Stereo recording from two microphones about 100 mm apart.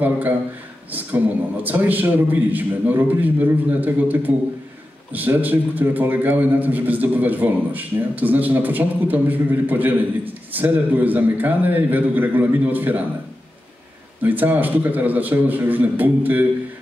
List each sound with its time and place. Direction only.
0.0 s a man's voice: 20° right (ahead or behind)
14.2 s a man's voice: 20° right (ahead or behind)